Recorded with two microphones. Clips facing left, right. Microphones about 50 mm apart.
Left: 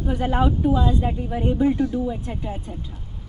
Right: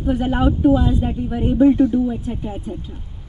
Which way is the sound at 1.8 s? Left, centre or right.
Right.